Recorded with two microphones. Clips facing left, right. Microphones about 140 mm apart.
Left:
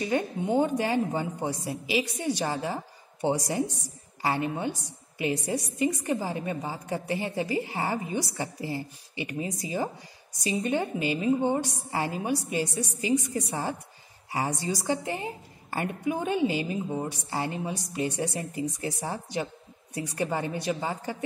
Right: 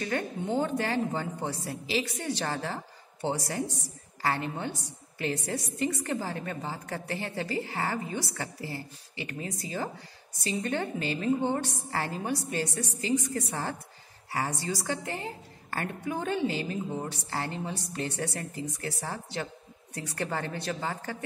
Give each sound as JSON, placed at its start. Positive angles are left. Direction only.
{"t": 0.0, "sound": "a woman's voice", "side_deg": 15}